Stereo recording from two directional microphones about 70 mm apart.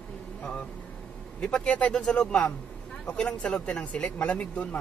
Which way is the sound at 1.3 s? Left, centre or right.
Centre.